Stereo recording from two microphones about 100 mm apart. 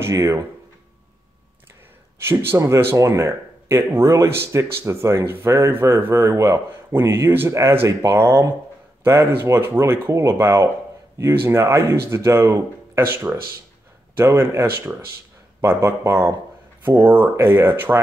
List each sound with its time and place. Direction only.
0.0 s speech: 30° right (ahead or behind)
2.2 s speech: 25° right (ahead or behind)